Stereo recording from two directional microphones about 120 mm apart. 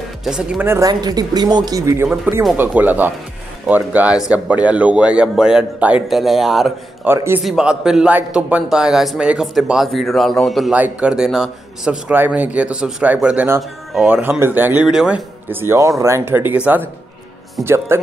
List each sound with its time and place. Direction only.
0.2 s speech: 5° right (ahead or behind)
0.6 s speech: 25° right (ahead or behind)
2.5 s speech: 15° right (ahead or behind)
7.1 s a man's voice: 15° right (ahead or behind); by 10.7 s centre (ahead or behind)
10.7 s a man's voice: 10° right (ahead or behind)